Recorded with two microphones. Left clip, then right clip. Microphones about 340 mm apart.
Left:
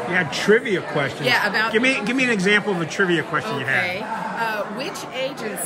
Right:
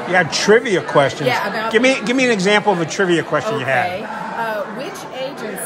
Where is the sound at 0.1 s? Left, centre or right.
Centre.